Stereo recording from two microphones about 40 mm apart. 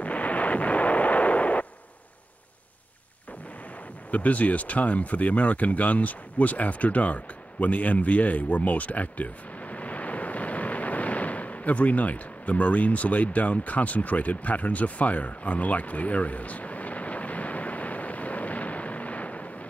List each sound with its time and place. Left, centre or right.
0.0 s artillery fire: left
4.1 s speech: left